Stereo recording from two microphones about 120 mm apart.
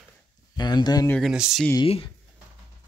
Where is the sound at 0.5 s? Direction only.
35° left (ahead or behind).